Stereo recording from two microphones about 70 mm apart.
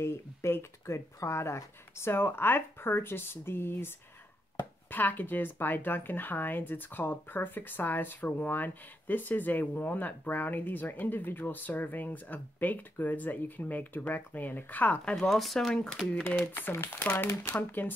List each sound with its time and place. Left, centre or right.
0.0 s speech: left
4.9 s speech: left
15.1 s speech: centre
16.3 s speech: left